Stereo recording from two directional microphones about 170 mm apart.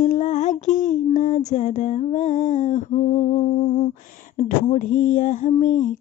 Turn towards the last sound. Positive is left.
turn(degrees=45)  # may be behind; listen again after turning